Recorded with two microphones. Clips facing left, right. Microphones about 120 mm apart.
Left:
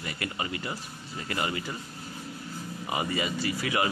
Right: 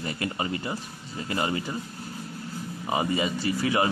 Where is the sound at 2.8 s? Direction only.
30° right (ahead or behind).